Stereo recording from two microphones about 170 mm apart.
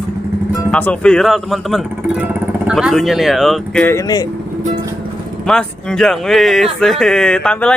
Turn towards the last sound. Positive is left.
turn(degrees=5)  # may be behind; listen again after turning